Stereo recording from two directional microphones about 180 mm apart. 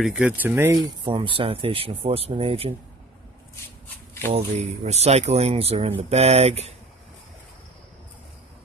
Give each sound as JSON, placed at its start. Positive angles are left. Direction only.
{"t": 0.0, "sound": "speech", "side_deg": -5}
{"t": 1.0, "sound": "speech", "side_deg": -30}
{"t": 3.8, "sound": "a sound", "side_deg": 10}
{"t": 4.6, "sound": "speech", "side_deg": -35}